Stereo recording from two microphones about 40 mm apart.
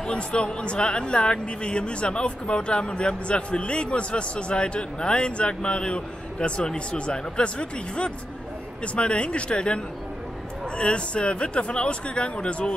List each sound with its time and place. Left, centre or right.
0.0 s speech: left